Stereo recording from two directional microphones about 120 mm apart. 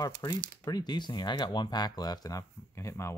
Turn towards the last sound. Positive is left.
turn(degrees=20)  # may be behind; listen again after turning